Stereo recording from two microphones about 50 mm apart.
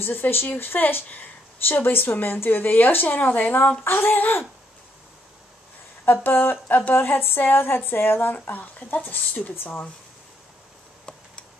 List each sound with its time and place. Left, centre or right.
0.0 s a woman's voice: left
3.8 s a woman's voice: left
6.2 s a woman's voice: left